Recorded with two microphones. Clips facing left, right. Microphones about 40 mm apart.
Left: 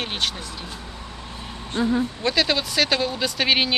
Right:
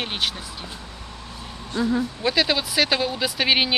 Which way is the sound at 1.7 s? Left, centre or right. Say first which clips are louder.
Left 1 dB; left.